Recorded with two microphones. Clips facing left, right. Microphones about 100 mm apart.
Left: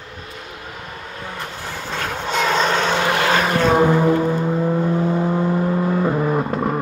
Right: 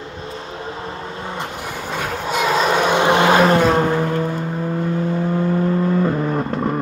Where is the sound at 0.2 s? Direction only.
30° right (ahead or behind).